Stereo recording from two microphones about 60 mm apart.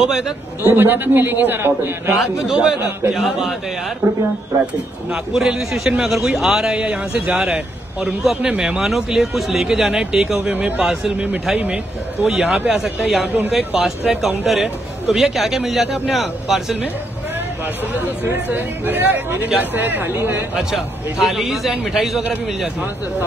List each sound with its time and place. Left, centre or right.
0.0 s a man's voice: centre
0.7 s speech: right
2.1 s a man's voice: centre
5.1 s a man's voice: centre
11.5 s a man's voice: right
12.3 s a man's voice: centre
13.0 s a man's voice: centre
17.9 s speech: right
20.5 s a man's voice: centre